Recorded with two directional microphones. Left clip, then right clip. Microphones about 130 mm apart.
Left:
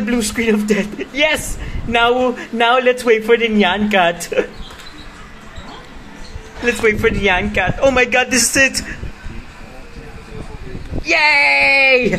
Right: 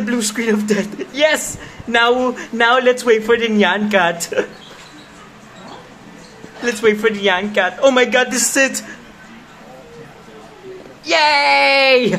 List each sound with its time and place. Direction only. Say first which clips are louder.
0.0 s a man's voice: left 2 dB; 5° left (ahead or behind)
6.6 s a man's voice: even; 10° left (ahead or behind)
11.1 s a man's voice: left 1 dB; 15° left (ahead or behind)